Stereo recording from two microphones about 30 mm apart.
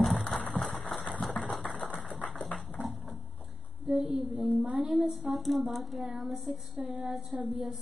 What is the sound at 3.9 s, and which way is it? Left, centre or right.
Speech, centre.